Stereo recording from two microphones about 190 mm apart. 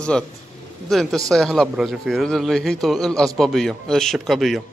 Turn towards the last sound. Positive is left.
turn(degrees=0)  # may be behind; listen again after turning